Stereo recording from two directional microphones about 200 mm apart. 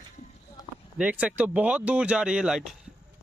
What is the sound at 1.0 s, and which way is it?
A man's voice, 5° right (ahead or behind).